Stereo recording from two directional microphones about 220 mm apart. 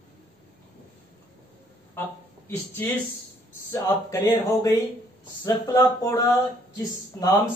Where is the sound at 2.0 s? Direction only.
10° left (ahead or behind).